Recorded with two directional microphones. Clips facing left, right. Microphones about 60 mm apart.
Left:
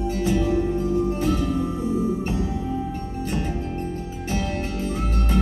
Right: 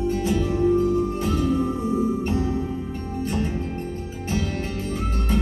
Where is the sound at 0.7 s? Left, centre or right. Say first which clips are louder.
Right 2 dB; right.